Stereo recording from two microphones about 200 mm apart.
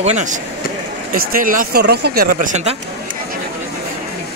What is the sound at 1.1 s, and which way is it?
Speech, 45° right (ahead or behind).